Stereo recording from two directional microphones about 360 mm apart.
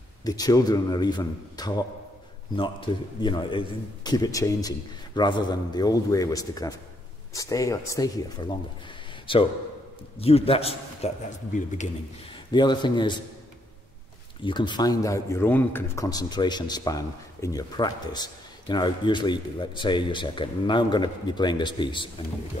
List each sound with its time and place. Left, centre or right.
0.2 s a man's voice: centre
14.4 s a man's voice: centre